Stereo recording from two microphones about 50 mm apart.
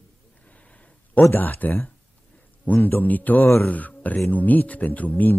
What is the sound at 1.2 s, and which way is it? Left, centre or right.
Speech, left.